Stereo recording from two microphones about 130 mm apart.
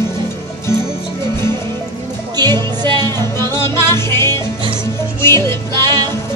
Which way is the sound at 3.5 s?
20° left (ahead or behind).